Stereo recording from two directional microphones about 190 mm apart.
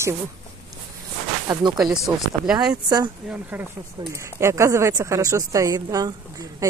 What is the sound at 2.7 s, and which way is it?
Speech, 20° right (ahead or behind).